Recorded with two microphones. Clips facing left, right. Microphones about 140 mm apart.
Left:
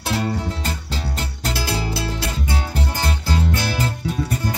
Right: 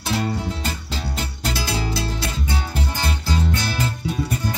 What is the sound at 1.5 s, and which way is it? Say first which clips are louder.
Music: left 1 dB; 5° left (ahead or behind).